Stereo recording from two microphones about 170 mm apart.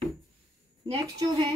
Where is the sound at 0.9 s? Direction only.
25° right (ahead or behind).